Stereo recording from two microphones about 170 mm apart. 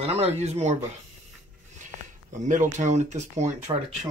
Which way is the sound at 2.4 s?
45° right (ahead or behind).